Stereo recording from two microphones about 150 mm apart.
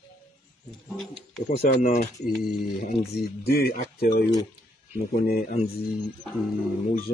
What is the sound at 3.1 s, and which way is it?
Speech, 90° left.